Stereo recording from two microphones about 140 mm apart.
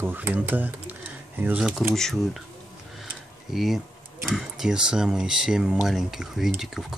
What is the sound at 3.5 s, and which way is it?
Speech, centre (ahead or behind).